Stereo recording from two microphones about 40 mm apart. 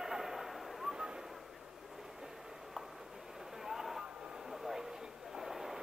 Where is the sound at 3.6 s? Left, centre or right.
Centre.